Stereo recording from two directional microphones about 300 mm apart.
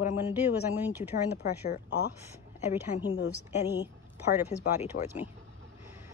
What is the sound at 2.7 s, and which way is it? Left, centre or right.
Speech, centre.